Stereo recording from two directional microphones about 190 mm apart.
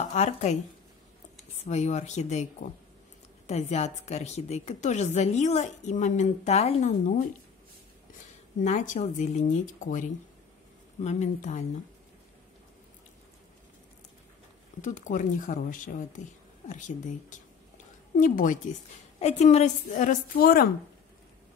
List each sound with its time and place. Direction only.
0.1 s a woman's voice: 35° left (ahead or behind)
1.6 s a woman's voice: 35° left (ahead or behind)
3.4 s a woman's voice: 35° left (ahead or behind)
8.6 s a woman's voice: 40° left (ahead or behind)
14.8 s a woman's voice: 40° left (ahead or behind)